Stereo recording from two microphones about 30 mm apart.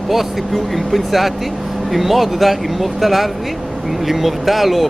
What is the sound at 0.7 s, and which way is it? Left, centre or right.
Speech, centre.